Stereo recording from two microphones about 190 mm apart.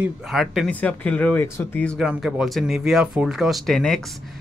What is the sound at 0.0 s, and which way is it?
Speech, centre (ahead or behind).